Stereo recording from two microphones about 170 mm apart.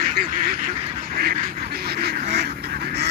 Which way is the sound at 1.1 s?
60° right (ahead or behind).